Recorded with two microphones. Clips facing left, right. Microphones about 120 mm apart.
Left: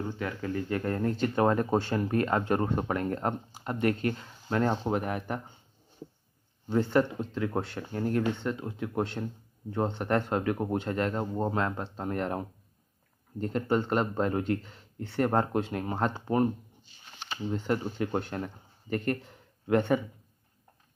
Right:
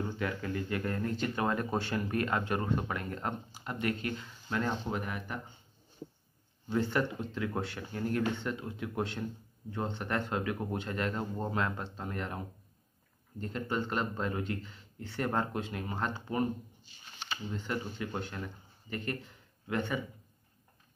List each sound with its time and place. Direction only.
0.2 s speech: 30° left (ahead or behind); by 5.4 s 45° left (ahead or behind)
6.7 s speech: 35° left (ahead or behind)
17.9 s a man's voice: 45° left (ahead or behind)